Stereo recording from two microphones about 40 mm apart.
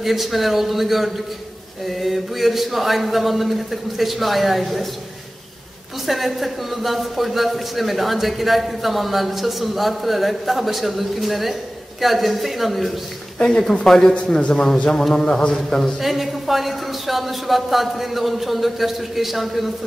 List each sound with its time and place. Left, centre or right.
0.0 s a man's voice: centre
6.0 s a man's voice: centre
13.5 s a man's voice: centre
14.1 s a man's voice: left
16.0 s a man's voice: centre